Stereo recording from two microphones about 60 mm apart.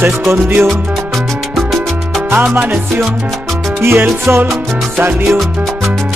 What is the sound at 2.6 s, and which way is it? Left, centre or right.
Music, centre.